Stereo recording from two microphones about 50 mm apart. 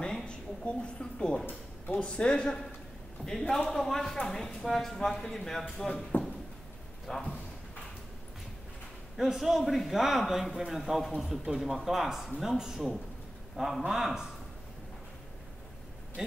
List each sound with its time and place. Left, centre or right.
0.0 s a sound: centre
2.0 s speech: left
5.9 s speech: left
7.1 s a man's voice: centre
9.1 s a man's voice: centre